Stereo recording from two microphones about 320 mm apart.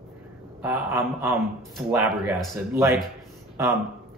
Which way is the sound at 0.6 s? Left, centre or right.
Centre.